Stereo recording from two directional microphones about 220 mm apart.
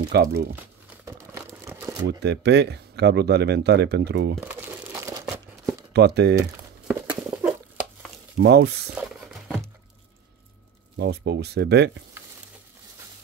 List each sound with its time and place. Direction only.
0.1 s speech: 50° right (ahead or behind)
1.0 s crumpling: 10° right (ahead or behind)
2.0 s speech: 50° right (ahead or behind)
4.4 s crumpling: 10° right (ahead or behind)
5.2 s a sound: 5° right (ahead or behind)
5.9 s speech: 50° right (ahead or behind)
6.9 s horse: 5° right (ahead or behind)
8.4 s speech: 50° right (ahead or behind)
8.9 s patter: centre (ahead or behind)
11.0 s speech: 50° right (ahead or behind)